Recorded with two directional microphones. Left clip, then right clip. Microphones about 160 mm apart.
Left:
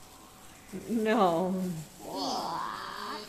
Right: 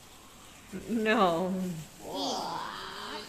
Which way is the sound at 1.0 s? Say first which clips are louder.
Even; 15° left (ahead or behind).